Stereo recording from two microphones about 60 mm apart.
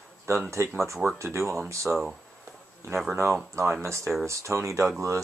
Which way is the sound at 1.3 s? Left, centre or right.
Right.